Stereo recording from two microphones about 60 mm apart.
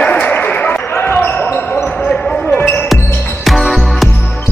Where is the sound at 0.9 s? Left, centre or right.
Left.